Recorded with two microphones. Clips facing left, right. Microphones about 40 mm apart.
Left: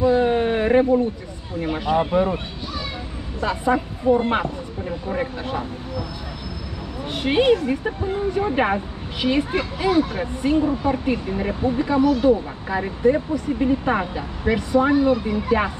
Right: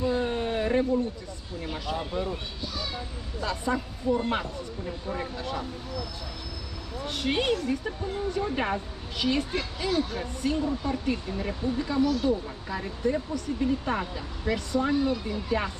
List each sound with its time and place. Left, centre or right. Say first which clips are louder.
0.1 s a sound: left 9 dB; left
1.6 s speech: left 12 dB; left
7.1 s speech: left 9 dB; left